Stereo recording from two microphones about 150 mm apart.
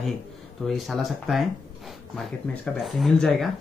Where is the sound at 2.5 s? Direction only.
10° left (ahead or behind).